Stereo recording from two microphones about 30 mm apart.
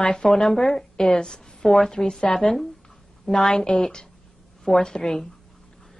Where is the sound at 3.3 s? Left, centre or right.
Centre.